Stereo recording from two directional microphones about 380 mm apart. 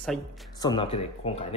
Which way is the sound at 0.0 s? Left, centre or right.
Centre.